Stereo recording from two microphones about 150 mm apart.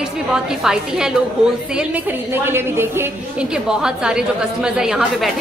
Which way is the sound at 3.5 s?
5° right (ahead or behind).